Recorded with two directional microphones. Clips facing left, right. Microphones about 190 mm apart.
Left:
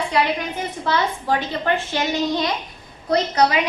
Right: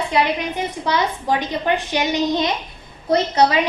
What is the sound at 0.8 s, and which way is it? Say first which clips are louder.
A woman's voice: even; 15° right (ahead or behind).